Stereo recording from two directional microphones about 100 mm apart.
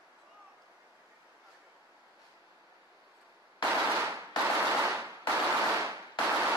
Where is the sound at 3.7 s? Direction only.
25° right (ahead or behind).